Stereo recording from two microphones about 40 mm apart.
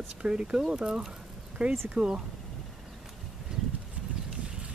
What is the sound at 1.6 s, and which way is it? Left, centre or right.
Speech, right.